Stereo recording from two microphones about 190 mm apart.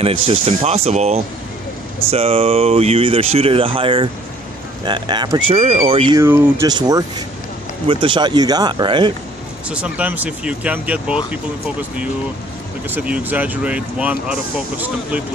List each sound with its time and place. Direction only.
0.0 s speech: 30° right (ahead or behind)
5.5 s speech: 35° right (ahead or behind)
6.1 s speech: 10° right (ahead or behind)
9.7 s speech: 5° right (ahead or behind)
12.9 s speech: 10° right (ahead or behind)